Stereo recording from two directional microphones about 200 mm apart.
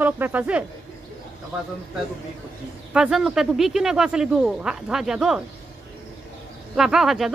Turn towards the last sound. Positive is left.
turn(degrees=0)  # may be behind; listen again after turning